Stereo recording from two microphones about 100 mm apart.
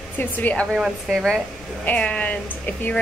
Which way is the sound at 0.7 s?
5° right (ahead or behind).